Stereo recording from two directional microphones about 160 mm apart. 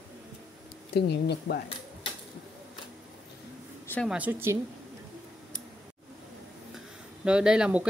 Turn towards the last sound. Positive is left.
turn(degrees=-5)  # may be behind; listen again after turning